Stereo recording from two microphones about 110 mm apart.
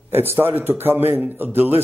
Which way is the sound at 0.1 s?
20° right (ahead or behind).